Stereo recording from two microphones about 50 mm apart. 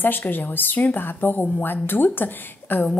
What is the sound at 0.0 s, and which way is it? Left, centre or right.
A woman's voice, left.